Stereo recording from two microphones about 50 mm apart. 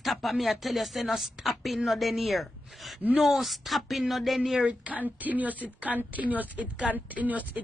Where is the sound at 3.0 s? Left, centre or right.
Right.